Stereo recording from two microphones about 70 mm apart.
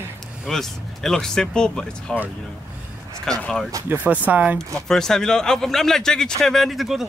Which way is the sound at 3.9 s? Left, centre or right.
Right.